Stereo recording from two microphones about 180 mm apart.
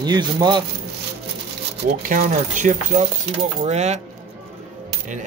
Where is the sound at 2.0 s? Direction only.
45° right (ahead or behind).